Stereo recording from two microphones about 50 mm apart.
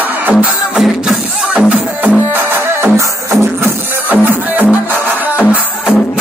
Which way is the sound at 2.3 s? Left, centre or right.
Right.